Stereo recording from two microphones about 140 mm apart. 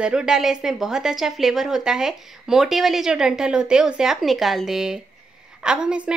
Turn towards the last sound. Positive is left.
turn(degrees=-5)  # may be behind; listen again after turning